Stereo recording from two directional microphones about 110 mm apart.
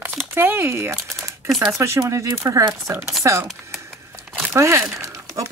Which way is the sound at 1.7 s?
25° right (ahead or behind).